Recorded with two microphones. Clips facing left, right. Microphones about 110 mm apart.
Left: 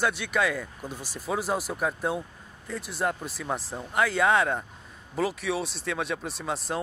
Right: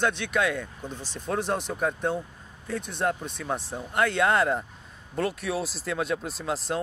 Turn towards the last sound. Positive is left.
turn(degrees=0)  # may be behind; listen again after turning